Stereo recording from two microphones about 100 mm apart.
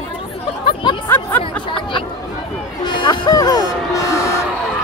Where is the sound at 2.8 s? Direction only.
50° left (ahead or behind); by 4.4 s 30° left (ahead or behind).